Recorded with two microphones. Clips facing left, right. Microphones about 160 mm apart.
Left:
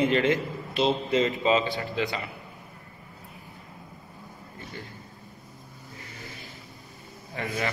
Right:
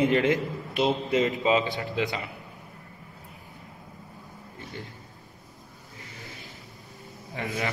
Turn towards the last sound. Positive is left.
turn(degrees=-15)  # may be behind; listen again after turning